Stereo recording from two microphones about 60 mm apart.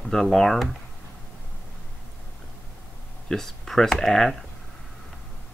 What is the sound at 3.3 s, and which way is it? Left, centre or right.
Speech, centre.